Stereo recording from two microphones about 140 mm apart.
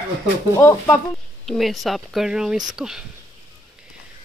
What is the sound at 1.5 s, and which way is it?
Speech, centre (ahead or behind).